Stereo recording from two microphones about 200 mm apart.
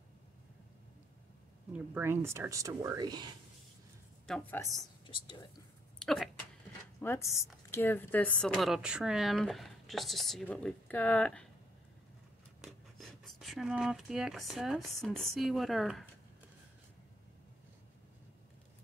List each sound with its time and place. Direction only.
1.7 s speech: 10° right (ahead or behind)
4.3 s a woman's voice: 10° left (ahead or behind)
4.7 s speech: 25° left (ahead or behind)
5.9 s speech: centre (ahead or behind)
7.0 s a woman's voice: 10° left (ahead or behind)
12.9 s speech: centre (ahead or behind)